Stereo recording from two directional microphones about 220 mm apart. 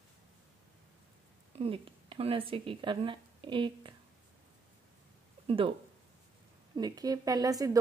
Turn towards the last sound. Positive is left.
turn(degrees=-15)  # may be behind; listen again after turning